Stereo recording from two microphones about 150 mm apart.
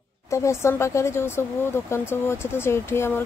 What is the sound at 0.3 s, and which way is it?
Speech, 20° left (ahead or behind).